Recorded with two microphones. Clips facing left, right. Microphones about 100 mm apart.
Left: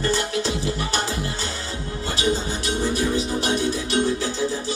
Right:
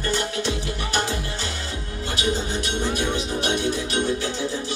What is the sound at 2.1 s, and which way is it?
Music, 30° left (ahead or behind).